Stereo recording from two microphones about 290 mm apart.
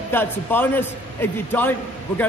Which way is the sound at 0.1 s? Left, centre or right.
Centre.